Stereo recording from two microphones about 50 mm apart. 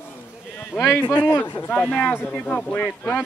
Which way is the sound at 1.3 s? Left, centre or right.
Left.